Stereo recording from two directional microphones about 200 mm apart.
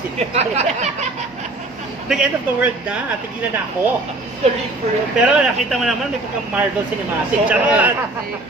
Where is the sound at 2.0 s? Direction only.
5° right (ahead or behind).